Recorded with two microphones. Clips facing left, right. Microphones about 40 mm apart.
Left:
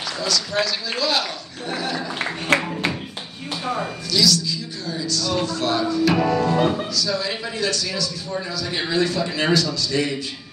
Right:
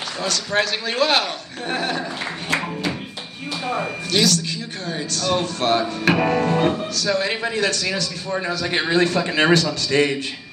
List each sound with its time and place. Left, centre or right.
0.2 s a woman's voice: right
2.2 s speech: left
3.6 s a woman's voice: right